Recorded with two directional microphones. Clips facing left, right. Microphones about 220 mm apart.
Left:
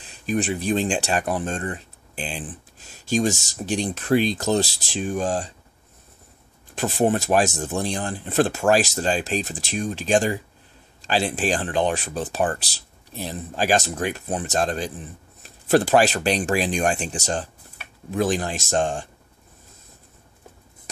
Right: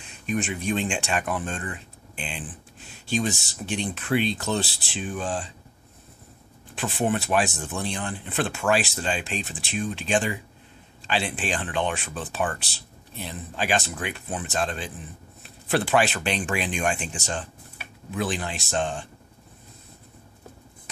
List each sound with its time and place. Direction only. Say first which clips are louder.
0.0 s speech: left 4 dB; 35° left (ahead or behind)
6.7 s speech: left 5 dB; 40° left (ahead or behind)